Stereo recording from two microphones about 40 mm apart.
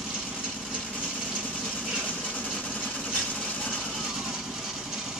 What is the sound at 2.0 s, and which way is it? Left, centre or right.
Vehicle, left.